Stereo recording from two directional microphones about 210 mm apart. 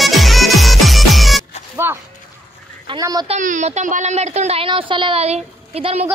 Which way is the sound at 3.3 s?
35° right (ahead or behind).